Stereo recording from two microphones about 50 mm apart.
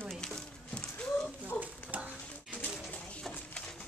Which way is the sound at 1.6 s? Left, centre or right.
Right.